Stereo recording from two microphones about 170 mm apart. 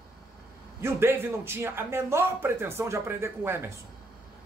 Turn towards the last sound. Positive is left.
turn(degrees=-15)  # may be behind; listen again after turning